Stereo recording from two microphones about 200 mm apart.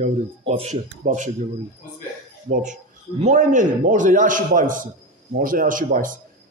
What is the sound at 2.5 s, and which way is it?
A man's voice, 40° right (ahead or behind).